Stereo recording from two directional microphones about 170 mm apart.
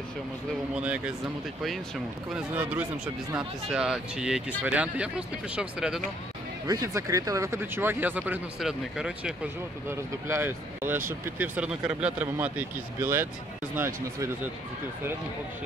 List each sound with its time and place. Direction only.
0.7 s speech: 5° right (ahead or behind)
2.3 s speech: 10° right (ahead or behind)
6.7 s speech: 20° right (ahead or behind)